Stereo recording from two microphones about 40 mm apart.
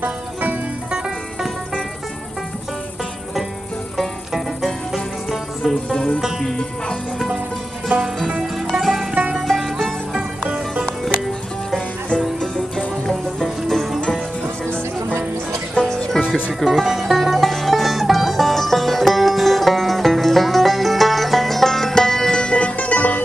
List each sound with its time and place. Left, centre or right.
0.0 s banjo: right
4.9 s music: centre
6.4 s music: centre
7.9 s music: right
8.8 s music: centre
10.5 s music: right
12.4 s music: centre
16.1 s music: centre
16.5 s music: centre; by 23.2 s left